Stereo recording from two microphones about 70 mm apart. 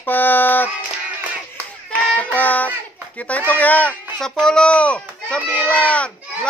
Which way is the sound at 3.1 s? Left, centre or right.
Left.